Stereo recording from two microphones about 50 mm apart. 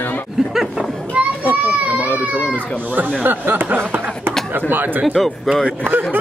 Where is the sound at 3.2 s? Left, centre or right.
Right.